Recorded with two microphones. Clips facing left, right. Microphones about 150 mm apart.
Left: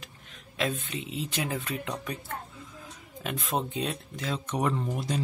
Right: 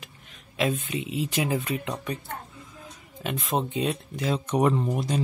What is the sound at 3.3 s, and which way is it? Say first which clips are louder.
Speech: right 3 dB; centre (ahead or behind).